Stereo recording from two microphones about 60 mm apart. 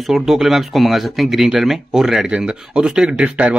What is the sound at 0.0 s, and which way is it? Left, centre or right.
Speech, centre.